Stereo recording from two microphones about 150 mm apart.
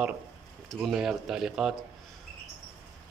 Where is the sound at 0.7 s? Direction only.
5° right (ahead or behind).